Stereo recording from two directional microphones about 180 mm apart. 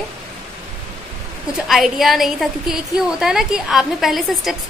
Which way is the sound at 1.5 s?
Centre (ahead or behind).